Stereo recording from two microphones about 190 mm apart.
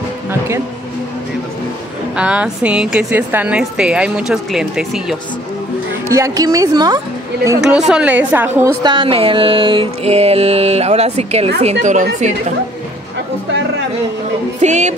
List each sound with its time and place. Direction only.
2.1 s a woman's voice: 5° right (ahead or behind)
6.0 s a woman's voice: 15° right (ahead or behind)
7.6 s a woman's voice: 5° right (ahead or behind)
8.8 s mantra: 25° right (ahead or behind)
14.6 s mantra: 35° right (ahead or behind)